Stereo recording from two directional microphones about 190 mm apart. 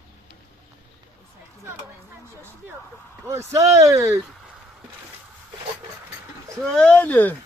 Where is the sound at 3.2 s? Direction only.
15° right (ahead or behind).